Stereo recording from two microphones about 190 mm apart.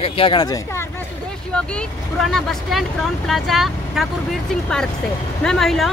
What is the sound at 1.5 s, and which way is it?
Speech, 5° left (ahead or behind).